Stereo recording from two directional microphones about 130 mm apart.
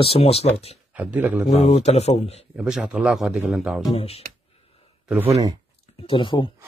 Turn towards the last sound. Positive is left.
turn(degrees=40)  # may be behind; listen again after turning